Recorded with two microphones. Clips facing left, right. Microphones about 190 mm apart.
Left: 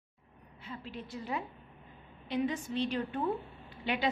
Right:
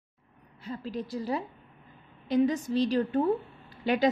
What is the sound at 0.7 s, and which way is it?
A woman's voice, 40° right (ahead or behind).